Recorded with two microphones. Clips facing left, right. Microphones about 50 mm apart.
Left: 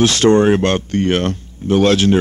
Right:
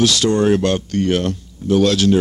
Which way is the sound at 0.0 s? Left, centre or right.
Left.